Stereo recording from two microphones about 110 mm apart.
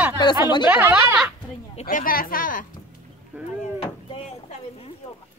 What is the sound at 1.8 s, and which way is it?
Speech, 80° left.